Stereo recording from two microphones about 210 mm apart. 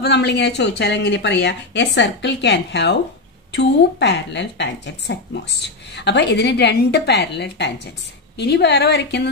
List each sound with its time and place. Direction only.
0.0 s a woman's voice: 55° left (ahead or behind)